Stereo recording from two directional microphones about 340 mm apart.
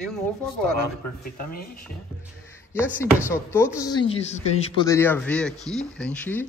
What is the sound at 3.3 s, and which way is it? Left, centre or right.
Speech, centre.